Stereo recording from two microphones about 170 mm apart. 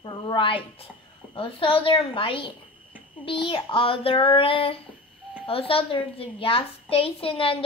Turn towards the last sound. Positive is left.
turn(degrees=30)  # may be behind; listen again after turning